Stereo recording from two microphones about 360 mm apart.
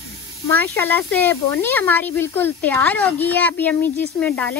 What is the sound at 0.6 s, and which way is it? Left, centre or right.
Speech, centre.